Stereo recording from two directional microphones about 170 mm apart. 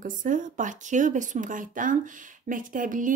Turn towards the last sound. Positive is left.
turn(degrees=-50)  # may be behind; listen again after turning